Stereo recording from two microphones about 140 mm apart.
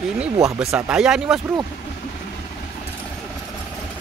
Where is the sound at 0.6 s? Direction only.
5° right (ahead or behind).